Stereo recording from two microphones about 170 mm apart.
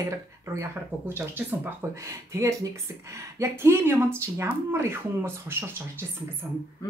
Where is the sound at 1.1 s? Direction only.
10° right (ahead or behind).